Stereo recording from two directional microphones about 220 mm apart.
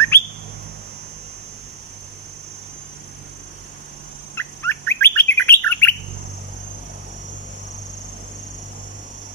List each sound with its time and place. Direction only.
0.1 s bird: 10° left (ahead or behind)
4.4 s bird: 10° left (ahead or behind)